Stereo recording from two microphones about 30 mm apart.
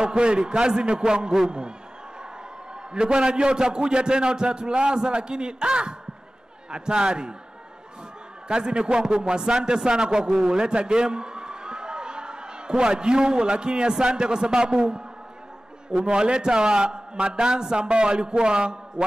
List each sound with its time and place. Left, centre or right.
0.0 s a man's voice: right
2.7 s a man's voice: right
8.5 s a man's voice: right